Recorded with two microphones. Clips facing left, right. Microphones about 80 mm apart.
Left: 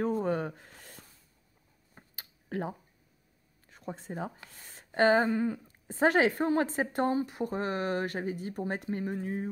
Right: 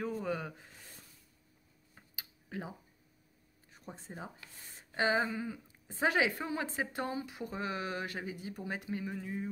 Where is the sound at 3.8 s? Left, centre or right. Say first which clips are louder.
Left 9 dB; left.